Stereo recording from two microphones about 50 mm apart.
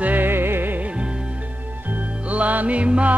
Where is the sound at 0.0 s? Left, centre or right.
Right.